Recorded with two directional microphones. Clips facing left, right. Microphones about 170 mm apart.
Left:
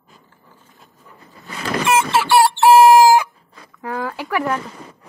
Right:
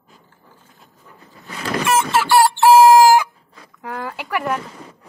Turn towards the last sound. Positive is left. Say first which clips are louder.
# left 1 dB
turn(degrees=-5)  # may be behind; listen again after turning